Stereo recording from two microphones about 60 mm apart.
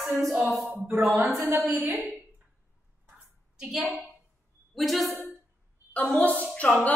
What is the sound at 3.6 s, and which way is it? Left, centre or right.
A woman's voice, centre.